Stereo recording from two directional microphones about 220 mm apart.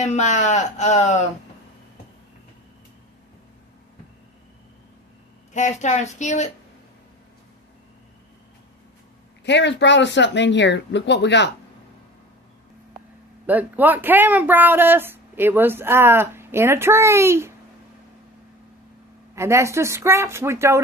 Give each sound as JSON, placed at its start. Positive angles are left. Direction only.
{"t": 0.0, "sound": "speech", "side_deg": 30}
{"t": 5.5, "sound": "speech", "side_deg": 35}
{"t": 9.4, "sound": "speech", "side_deg": 50}
{"t": 13.5, "sound": "speech", "side_deg": -10}
{"t": 19.3, "sound": "speech", "side_deg": -15}